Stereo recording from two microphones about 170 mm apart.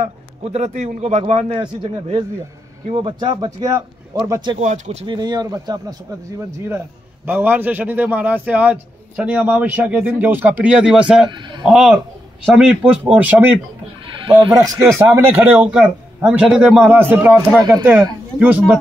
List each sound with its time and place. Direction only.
0.4 s a man's voice: 40° right (ahead or behind); by 4.6 s 20° right (ahead or behind)
4.6 s a man's voice: 45° right (ahead or behind)
5.0 s a man's voice: 25° right (ahead or behind)
7.2 s a man's voice: 10° right (ahead or behind)
11.2 s a man's voice: 25° right (ahead or behind)
11.6 s a man's voice: 5° right (ahead or behind)
14.2 s a man's voice: 30° right (ahead or behind)
15.0 s a man's voice: 15° right (ahead or behind)
17.6 s a man's voice: 20° right (ahead or behind)
18.4 s a man's voice: 10° right (ahead or behind)